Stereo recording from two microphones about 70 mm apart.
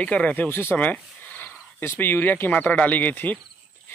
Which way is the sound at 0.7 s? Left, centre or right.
Left.